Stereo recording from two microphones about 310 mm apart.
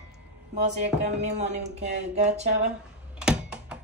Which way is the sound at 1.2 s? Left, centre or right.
Right.